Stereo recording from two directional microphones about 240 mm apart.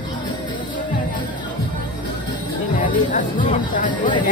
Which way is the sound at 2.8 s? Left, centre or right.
Left.